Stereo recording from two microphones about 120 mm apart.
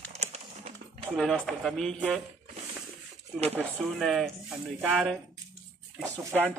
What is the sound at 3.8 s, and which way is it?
Speech, centre (ahead or behind).